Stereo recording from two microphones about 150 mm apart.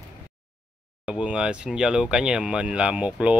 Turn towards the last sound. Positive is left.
turn(degrees=-5)  # may be behind; listen again after turning